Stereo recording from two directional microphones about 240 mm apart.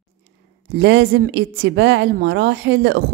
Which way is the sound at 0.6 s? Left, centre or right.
Right.